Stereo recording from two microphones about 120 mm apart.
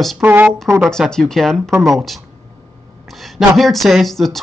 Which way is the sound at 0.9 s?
5° left (ahead or behind).